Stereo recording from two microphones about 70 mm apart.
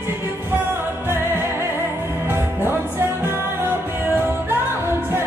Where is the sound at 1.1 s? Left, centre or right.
Right.